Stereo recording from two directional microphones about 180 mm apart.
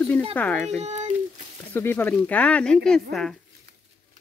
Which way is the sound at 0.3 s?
10° left (ahead or behind).